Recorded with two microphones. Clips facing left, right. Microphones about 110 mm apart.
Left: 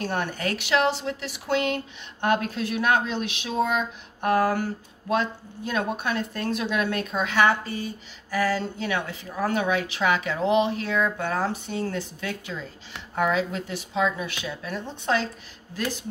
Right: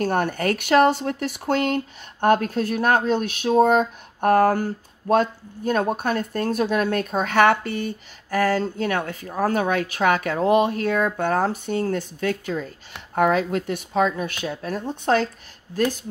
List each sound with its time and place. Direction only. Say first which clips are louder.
0.0 s speech: right 6 dB; 50° right (ahead or behind)